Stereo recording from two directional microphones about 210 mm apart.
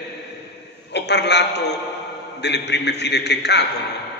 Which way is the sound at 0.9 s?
55° left (ahead or behind).